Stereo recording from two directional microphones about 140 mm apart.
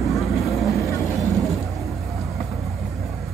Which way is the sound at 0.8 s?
20° left (ahead or behind).